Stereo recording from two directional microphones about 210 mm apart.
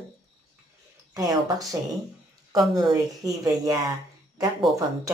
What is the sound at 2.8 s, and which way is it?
Speech, 15° right (ahead or behind).